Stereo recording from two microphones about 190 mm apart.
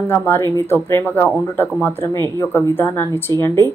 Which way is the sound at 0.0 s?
10° left (ahead or behind).